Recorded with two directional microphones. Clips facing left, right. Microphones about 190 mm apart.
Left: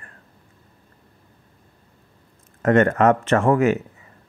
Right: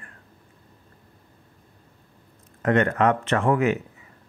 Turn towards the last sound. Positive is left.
turn(degrees=45)  # may be behind; listen again after turning